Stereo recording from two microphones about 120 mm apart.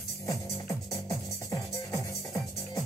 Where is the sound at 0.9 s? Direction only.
25° left (ahead or behind).